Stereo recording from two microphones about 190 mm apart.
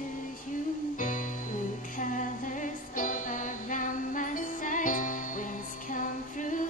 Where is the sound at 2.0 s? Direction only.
40° left (ahead or behind).